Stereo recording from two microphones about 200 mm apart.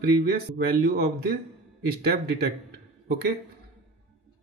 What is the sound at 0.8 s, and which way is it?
A man's voice, 55° right (ahead or behind).